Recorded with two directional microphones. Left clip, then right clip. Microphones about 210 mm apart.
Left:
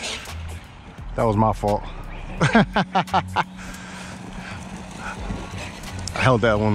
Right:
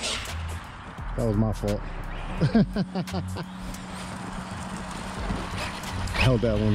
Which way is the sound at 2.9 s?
30° left (ahead or behind).